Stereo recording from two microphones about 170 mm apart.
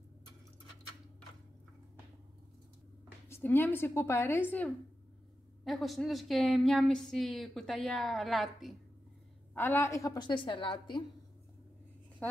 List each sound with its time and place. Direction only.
3.3 s a woman's voice: 15° left (ahead or behind)
9.5 s a woman's voice: 10° left (ahead or behind); by 11.1 s 30° left (ahead or behind)